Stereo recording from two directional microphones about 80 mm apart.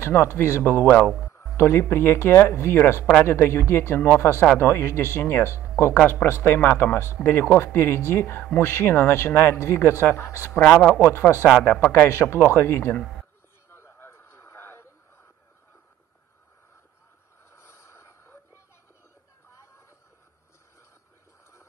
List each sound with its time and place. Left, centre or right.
0.0 s speech: left
5.9 s speech: left
11.6 s speech: centre
11.9 s speech: left
13.7 s a sound: left
17.6 s snort: left